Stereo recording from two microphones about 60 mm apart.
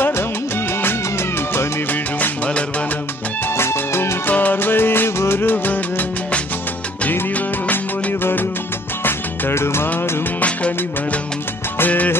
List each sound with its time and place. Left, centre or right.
1.9 s music: left
3.5 s music: left
4.3 s music: left
7.1 s music: left
11.8 s music: left